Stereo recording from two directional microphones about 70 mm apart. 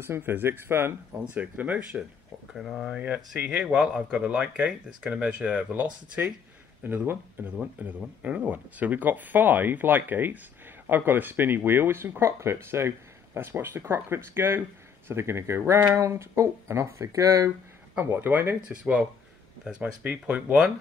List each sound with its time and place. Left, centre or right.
0.0 s speech: right
1.3 s speech: right
2.5 s speech: centre
3.3 s speech: centre; by 17.5 s right
17.9 s speech: right